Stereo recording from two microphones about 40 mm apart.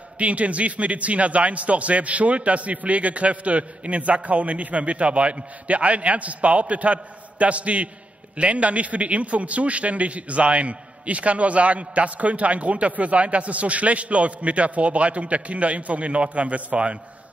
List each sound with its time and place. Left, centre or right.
0.2 s a man's voice: right